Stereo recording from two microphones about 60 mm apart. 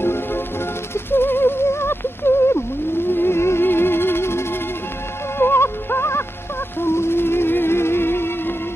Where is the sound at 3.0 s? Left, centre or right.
Left.